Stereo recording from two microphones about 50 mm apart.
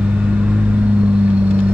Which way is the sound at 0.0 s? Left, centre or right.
Right.